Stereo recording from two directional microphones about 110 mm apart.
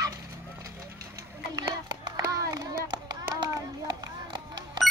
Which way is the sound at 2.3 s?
35° right (ahead or behind).